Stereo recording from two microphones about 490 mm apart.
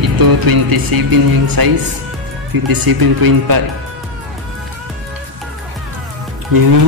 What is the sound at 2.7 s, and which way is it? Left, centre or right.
Speech, right.